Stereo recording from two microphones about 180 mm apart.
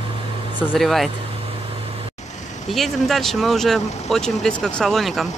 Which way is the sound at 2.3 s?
40° left (ahead or behind).